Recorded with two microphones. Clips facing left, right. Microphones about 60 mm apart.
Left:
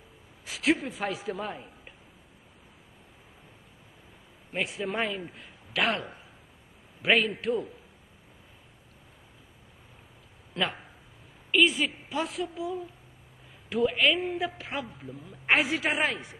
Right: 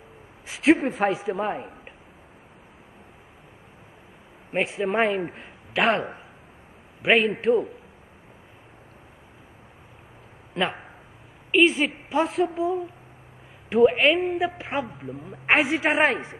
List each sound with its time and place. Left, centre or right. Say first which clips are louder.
0.5 s a man's voice: right 7 dB; right
1.1 s a man's voice: right 6 dB; right
1.5 s a woman's voice: right 9 dB; right
4.5 s a man's voice: right 7 dB; right
5.0 s a man's voice: right 9 dB; right
10.5 s a man's voice: right 4 dB; right
13.9 s a woman's voice: right 5 dB; right
14.2 s a man's voice: right 6 dB; centre